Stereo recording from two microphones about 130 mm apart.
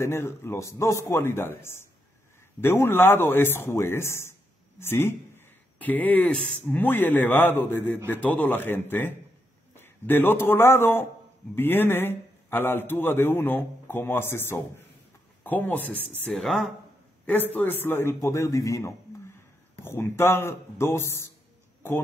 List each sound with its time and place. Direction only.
0.0 s a man's voice: 20° left (ahead or behind)
16.3 s speech: centre (ahead or behind)
17.3 s a man's voice: 15° left (ahead or behind)